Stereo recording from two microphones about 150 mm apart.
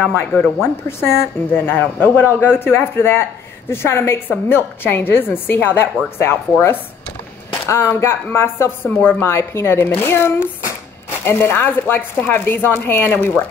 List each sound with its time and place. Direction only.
0.0 s speech: 10° left (ahead or behind)
7.6 s speech: 15° left (ahead or behind)